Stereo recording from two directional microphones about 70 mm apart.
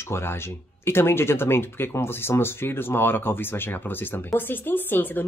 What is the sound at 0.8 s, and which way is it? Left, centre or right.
Speech, left.